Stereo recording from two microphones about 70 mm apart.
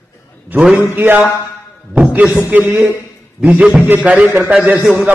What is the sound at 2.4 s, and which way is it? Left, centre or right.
A man's voice, right.